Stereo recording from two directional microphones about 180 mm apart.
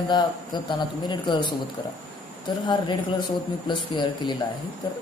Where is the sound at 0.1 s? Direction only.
25° left (ahead or behind).